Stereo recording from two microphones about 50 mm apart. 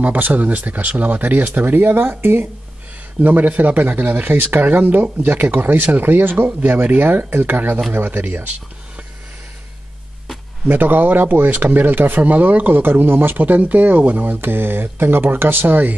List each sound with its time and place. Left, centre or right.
0.0 s speech: right
3.2 s speech: right
10.7 s speech: right